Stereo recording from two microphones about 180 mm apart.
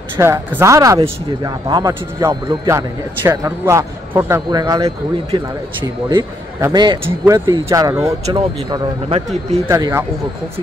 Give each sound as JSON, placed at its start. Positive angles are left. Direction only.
{"t": 0.2, "sound": "a man's voice", "side_deg": -15}
{"t": 8.4, "sound": "speech", "side_deg": -30}
{"t": 9.7, "sound": "a man's voice", "side_deg": -20}